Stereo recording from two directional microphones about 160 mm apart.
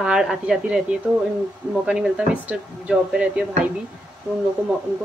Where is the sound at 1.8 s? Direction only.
5° right (ahead or behind).